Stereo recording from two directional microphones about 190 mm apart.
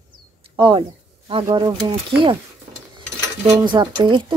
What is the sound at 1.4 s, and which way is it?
Speech, 20° right (ahead or behind).